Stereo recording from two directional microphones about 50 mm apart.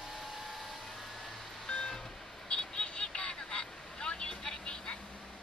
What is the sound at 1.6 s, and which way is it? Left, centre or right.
Vehicle, centre.